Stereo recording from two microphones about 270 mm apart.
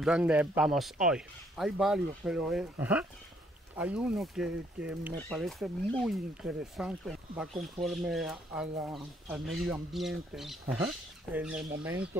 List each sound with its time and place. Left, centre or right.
0.0 s speech: centre